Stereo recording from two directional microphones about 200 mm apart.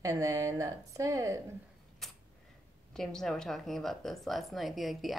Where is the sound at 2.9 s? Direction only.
Centre (ahead or behind).